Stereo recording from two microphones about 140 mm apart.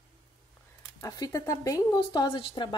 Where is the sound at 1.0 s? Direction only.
25° left (ahead or behind).